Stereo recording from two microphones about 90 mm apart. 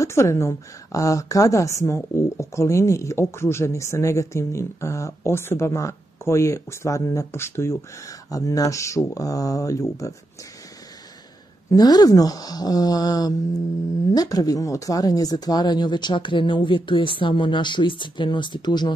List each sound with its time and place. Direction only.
0.0 s a woman's voice: 30° left (ahead or behind)
11.7 s speech: 45° left (ahead or behind)